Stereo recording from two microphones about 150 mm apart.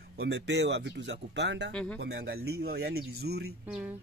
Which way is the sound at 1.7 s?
5° left (ahead or behind).